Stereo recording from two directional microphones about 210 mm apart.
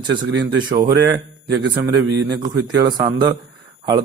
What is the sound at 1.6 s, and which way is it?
Speech, 55° right (ahead or behind).